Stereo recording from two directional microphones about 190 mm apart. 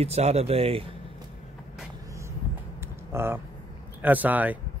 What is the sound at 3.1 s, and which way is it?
Speech, 10° right (ahead or behind).